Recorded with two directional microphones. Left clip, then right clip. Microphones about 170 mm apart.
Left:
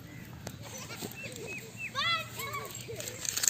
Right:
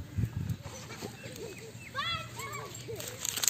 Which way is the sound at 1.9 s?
50° right (ahead or behind).